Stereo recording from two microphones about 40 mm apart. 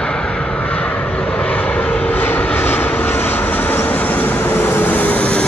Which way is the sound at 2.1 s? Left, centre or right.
Left.